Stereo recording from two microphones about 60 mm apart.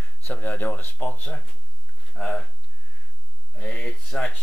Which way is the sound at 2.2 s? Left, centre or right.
Centre.